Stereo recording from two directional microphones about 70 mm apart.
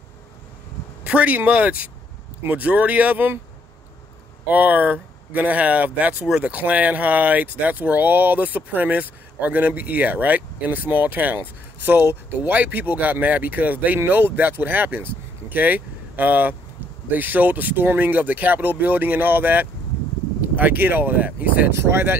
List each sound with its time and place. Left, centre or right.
1.0 s speech: centre
4.5 s speech: right